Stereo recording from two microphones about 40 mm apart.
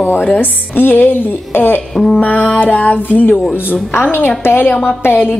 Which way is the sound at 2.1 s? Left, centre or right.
Left.